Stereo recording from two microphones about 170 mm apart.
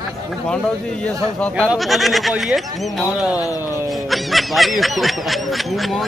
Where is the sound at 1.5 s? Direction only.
5° right (ahead or behind).